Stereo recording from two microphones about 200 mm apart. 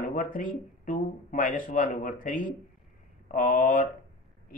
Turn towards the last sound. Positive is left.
turn(degrees=40)  # may be behind; listen again after turning